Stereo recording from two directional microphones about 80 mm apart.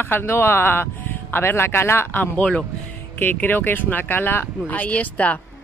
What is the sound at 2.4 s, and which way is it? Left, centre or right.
Speech, centre.